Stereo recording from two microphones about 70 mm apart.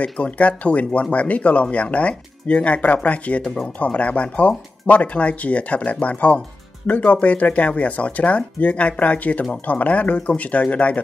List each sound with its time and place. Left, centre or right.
0.0 s speech: centre